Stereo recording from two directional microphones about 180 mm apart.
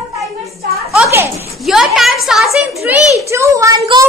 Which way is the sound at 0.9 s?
10° right (ahead or behind).